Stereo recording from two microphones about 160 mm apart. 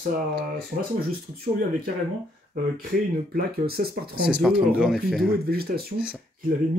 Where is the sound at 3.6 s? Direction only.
70° right (ahead or behind).